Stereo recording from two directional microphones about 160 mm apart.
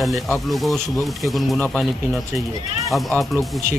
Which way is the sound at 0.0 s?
Centre (ahead or behind).